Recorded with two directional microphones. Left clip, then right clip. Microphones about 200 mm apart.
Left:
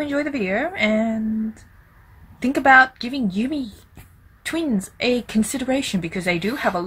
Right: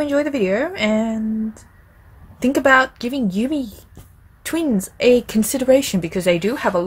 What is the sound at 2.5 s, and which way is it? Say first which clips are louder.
Speech: left 1 dB; 55° right (ahead or behind).